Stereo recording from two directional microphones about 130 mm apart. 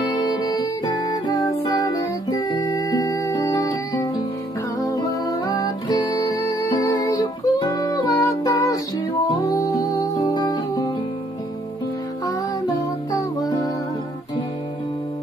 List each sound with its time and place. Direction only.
0.1 s music: 30° left (ahead or behind)
13.1 s music: 30° left (ahead or behind)